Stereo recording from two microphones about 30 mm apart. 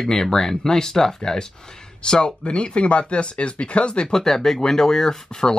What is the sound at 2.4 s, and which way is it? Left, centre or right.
Speech, left.